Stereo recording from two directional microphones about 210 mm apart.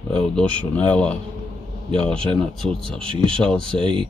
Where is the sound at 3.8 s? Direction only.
25° right (ahead or behind).